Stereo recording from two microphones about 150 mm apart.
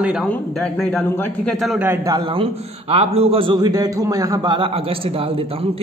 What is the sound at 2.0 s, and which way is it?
A man's voice, 30° right (ahead or behind).